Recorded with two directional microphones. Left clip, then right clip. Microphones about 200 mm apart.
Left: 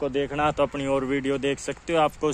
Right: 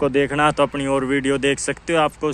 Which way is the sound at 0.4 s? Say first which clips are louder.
Right 3 dB; centre (ahead or behind).